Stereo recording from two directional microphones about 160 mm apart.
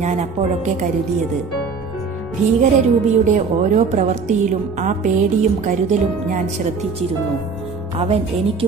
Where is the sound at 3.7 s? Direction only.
45° right (ahead or behind).